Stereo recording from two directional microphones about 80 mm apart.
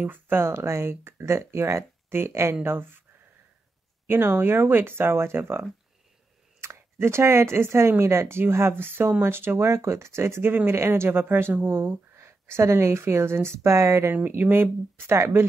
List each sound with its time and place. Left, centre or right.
0.0 s speech: right
4.1 s speech: right
14.1 s speech: right